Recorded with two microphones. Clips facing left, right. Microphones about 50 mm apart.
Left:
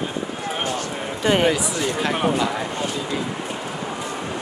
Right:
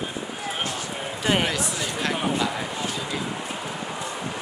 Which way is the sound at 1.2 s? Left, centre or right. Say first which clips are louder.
Left 5 dB; centre.